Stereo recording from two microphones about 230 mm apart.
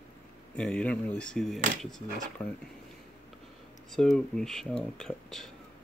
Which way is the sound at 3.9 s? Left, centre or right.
Centre.